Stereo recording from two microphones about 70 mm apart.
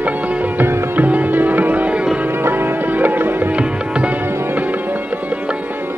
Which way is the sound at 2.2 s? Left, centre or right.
Right.